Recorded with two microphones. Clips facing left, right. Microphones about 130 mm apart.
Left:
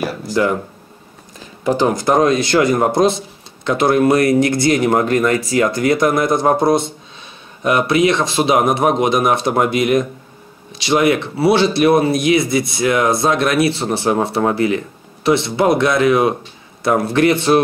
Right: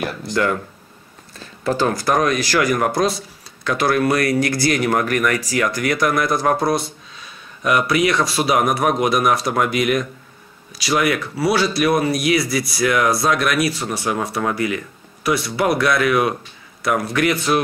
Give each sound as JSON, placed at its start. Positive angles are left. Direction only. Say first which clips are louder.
{"t": 0.1, "sound": "speech", "louder": "left 3 dB", "side_deg": 20}